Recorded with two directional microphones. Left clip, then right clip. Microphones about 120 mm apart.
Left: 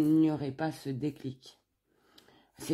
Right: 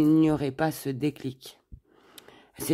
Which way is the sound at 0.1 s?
45° right (ahead or behind).